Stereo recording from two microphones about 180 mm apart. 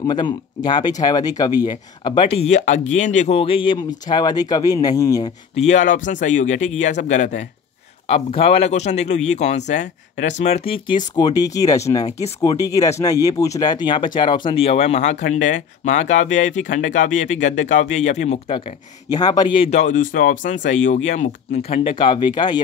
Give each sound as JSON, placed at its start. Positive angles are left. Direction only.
{"t": 0.0, "sound": "speech", "side_deg": 25}
{"t": 5.6, "sound": "speech", "side_deg": 40}
{"t": 8.1, "sound": "speech", "side_deg": 30}
{"t": 11.1, "sound": "speech", "side_deg": 20}
{"t": 19.1, "sound": "speech", "side_deg": 25}